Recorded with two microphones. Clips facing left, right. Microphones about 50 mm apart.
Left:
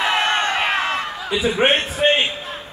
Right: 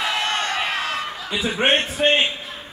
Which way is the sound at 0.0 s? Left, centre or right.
Left.